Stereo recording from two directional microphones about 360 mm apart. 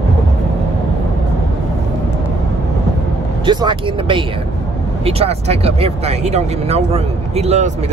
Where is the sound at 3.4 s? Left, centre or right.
Centre.